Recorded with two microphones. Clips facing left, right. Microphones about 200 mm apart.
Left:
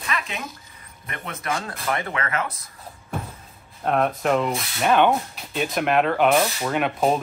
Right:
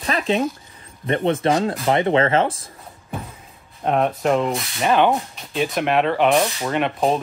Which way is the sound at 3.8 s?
Centre (ahead or behind).